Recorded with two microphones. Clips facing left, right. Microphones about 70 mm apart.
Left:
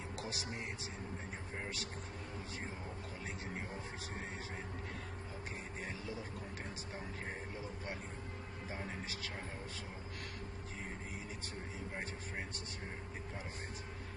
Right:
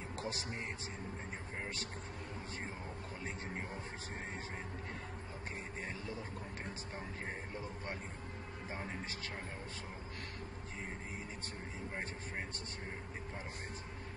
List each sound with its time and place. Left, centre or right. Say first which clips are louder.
0.2 s speech: right 3 dB; right
5.9 s speech: left 1 dB; right